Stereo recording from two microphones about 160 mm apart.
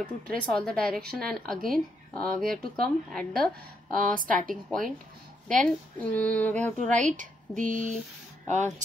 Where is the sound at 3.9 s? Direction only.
60° right (ahead or behind).